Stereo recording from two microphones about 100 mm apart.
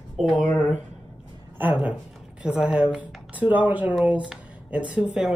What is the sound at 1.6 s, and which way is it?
Speech, 15° right (ahead or behind).